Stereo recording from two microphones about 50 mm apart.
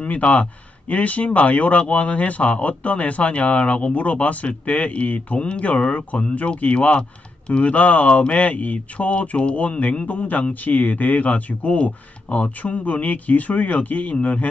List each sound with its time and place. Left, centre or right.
0.0 s speech: left